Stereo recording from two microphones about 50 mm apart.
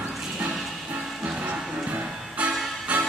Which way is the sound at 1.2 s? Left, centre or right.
Right.